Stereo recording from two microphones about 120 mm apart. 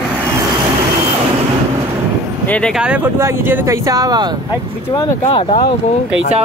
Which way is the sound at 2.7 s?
10° right (ahead or behind).